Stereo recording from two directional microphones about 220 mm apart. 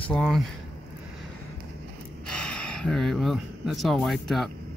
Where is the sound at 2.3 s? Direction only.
5° left (ahead or behind).